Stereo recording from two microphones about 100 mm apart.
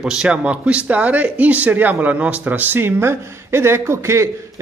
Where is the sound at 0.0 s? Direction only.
10° right (ahead or behind).